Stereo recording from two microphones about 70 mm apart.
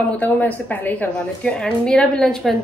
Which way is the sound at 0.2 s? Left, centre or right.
Left.